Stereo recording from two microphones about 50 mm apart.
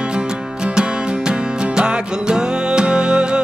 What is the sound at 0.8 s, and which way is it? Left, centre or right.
Music, centre.